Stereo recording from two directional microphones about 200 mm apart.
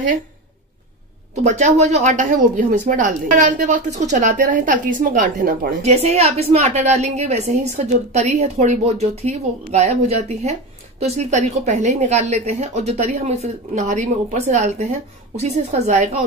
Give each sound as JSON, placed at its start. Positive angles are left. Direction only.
{"t": 1.3, "sound": "speech", "side_deg": -35}
{"t": 5.8, "sound": "speech", "side_deg": -35}